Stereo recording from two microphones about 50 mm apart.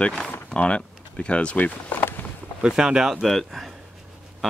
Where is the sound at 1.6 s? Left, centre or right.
Left.